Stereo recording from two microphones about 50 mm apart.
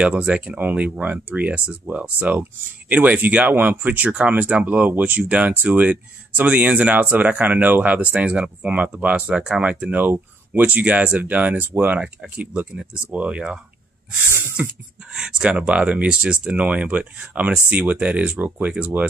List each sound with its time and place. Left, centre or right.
0.6 s speech: right
9.9 s speech: right
12.4 s speech: right
14.6 s speech: right
15.1 s speech: centre